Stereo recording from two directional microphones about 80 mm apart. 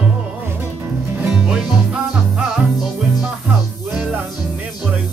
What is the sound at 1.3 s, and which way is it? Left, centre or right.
Music, centre.